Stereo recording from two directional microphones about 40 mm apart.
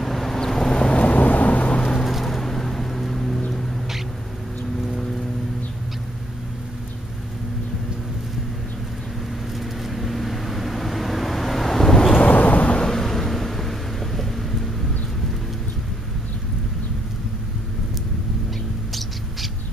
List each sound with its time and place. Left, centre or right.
0.0 s vehicle: centre; by 1.9 s left
2.0 s vehicle: centre
9.6 s vehicle: centre
12.2 s vehicle: left
12.7 s vehicle: centre
18.9 s a sound: centre